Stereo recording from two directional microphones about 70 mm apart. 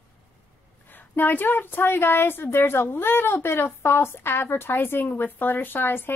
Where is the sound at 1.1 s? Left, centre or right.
Left.